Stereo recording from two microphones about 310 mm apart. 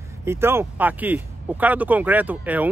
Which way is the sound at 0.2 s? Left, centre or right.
Centre.